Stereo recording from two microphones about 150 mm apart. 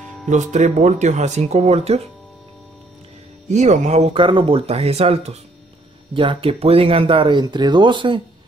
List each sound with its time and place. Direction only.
0.3 s speech: 50° right (ahead or behind)
3.4 s speech: 50° right (ahead or behind); by 8.2 s 35° right (ahead or behind)